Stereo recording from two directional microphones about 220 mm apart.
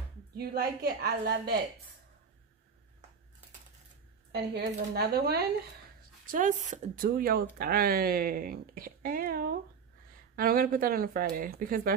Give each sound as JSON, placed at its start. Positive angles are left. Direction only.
{"t": 0.4, "sound": "a woman's voice", "side_deg": -45}
{"t": 4.3, "sound": "a woman's voice", "side_deg": -50}
{"t": 6.2, "sound": "speech", "side_deg": -35}